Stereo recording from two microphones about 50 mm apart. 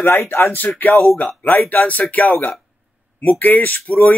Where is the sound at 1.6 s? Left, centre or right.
Left.